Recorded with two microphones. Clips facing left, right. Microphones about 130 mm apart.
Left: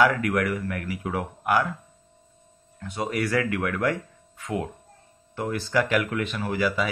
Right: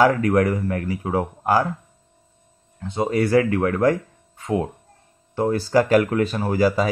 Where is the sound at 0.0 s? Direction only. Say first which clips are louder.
Right 5 dB; 30° right (ahead or behind).